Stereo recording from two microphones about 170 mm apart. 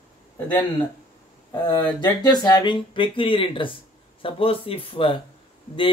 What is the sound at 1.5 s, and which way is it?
Speech, 20° left (ahead or behind).